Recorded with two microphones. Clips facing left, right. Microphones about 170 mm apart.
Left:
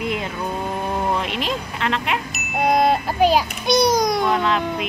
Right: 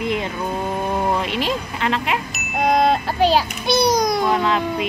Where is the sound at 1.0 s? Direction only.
Centre (ahead or behind).